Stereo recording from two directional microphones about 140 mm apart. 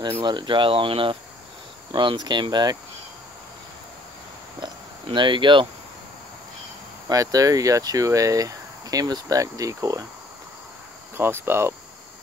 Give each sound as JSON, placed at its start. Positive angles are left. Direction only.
{"t": 0.2, "sound": "speech", "side_deg": -35}
{"t": 4.6, "sound": "insect", "side_deg": -35}
{"t": 7.1, "sound": "speech", "side_deg": -25}
{"t": 11.1, "sound": "cricket", "side_deg": -15}